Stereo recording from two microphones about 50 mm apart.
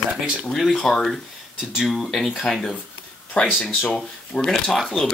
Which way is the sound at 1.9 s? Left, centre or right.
Centre.